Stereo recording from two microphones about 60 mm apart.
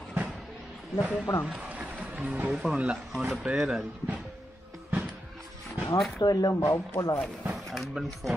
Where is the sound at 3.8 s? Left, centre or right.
Right.